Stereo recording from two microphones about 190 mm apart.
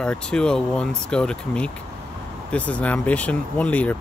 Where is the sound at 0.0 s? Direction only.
5° left (ahead or behind).